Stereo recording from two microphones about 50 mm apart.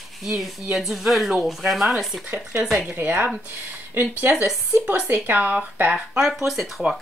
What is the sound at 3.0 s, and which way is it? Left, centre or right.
Speech, right.